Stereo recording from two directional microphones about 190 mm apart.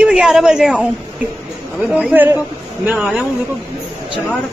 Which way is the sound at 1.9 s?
10° right (ahead or behind).